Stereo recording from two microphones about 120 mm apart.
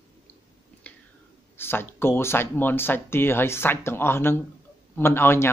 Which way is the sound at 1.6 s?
20° left (ahead or behind).